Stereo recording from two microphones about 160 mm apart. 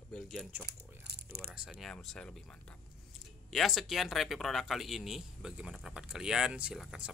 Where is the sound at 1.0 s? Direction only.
90° right.